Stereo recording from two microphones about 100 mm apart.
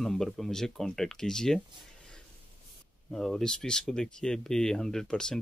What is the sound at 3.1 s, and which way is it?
Speech, 5° left (ahead or behind).